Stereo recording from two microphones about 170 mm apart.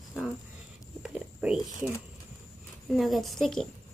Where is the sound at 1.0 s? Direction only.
5° right (ahead or behind).